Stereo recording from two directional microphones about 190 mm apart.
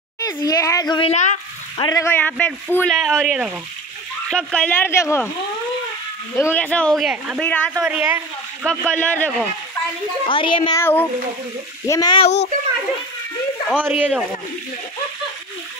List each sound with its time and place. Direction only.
0.2 s speech: 20° left (ahead or behind)
1.1 s speech: 40° left (ahead or behind)
1.8 s a man's voice: 20° left (ahead or behind)
6.3 s speech: 10° left (ahead or behind)
7.4 s a man's voice: 10° left (ahead or behind)
7.8 s speech: 5° right (ahead or behind)
8.6 s a man's voice: 5° left (ahead or behind)
10.2 s speech: 25° left (ahead or behind)
10.8 s a man's voice: 10° left (ahead or behind)
13.7 s speech: 5° right (ahead or behind)